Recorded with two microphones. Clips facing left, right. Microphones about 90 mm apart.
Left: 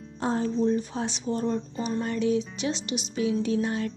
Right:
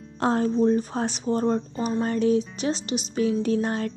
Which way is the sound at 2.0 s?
40° right (ahead or behind).